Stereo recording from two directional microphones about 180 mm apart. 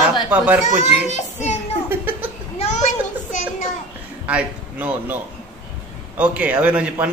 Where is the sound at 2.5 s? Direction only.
40° left (ahead or behind).